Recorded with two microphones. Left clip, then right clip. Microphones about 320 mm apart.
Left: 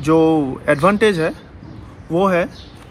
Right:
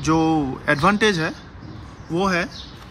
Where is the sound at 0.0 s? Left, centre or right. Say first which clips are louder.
Left 5 dB; centre.